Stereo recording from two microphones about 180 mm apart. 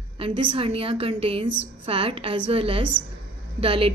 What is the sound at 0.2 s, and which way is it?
Speech, 25° right (ahead or behind).